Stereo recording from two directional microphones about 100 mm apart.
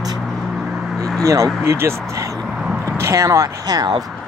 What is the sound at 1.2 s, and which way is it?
Speech, 30° right (ahead or behind).